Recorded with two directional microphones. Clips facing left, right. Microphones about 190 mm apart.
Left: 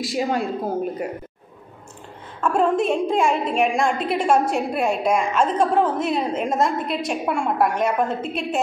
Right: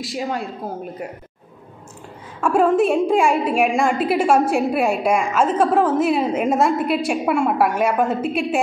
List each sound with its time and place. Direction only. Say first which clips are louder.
0.0 s speech: left 3 dB; centre (ahead or behind)
2.4 s a woman's voice: right 3 dB; 5° right (ahead or behind)